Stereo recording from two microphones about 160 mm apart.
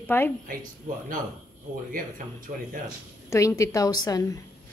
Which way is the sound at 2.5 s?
45° right (ahead or behind).